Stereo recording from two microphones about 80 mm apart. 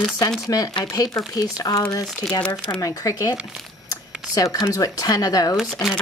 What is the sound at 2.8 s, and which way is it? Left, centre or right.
Speech, left.